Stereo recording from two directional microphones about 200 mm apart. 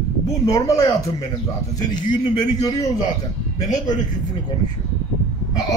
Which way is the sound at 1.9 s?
20° left (ahead or behind).